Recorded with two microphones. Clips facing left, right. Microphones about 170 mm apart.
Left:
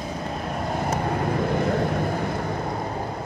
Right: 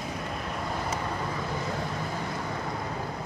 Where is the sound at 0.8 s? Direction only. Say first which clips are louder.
Left 7 dB; 50° left (ahead or behind).